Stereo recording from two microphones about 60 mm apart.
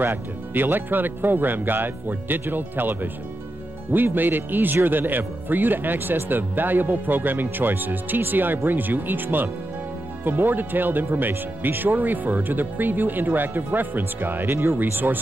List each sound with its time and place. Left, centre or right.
0.0 s speech: right